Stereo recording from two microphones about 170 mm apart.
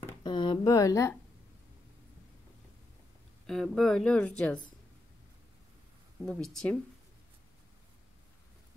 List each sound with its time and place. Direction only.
0.2 s speech: 25° left (ahead or behind)
3.4 s a woman's voice: 5° left (ahead or behind)
6.2 s a woman's voice: 5° left (ahead or behind)